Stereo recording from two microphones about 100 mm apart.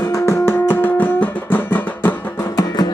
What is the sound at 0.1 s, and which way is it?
Music, 30° left (ahead or behind).